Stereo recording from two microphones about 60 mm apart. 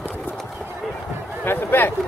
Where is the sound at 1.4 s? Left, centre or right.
Left.